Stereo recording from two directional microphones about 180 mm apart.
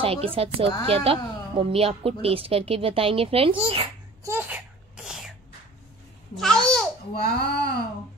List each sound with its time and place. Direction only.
0.0 s a child's voice: 30° right (ahead or behind)
4.2 s sneeze: 15° right (ahead or behind)
6.3 s babbling: 5° left (ahead or behind)
7.2 s speech: 60° left (ahead or behind)